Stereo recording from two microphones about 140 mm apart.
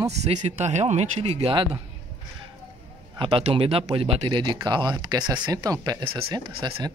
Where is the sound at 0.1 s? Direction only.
55° right (ahead or behind).